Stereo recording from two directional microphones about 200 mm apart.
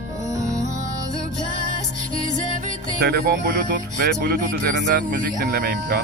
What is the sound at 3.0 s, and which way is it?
Speech, 50° right (ahead or behind).